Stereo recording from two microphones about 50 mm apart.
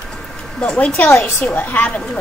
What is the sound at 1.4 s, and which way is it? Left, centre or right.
Speech, left.